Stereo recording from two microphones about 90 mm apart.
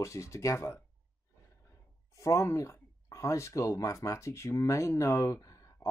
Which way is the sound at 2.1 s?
35° left (ahead or behind).